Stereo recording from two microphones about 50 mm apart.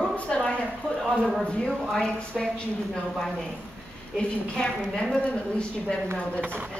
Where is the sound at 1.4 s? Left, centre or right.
Centre.